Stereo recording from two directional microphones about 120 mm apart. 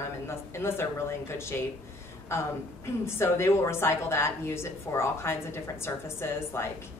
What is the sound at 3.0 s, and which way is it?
A woman's voice, 20° left (ahead or behind).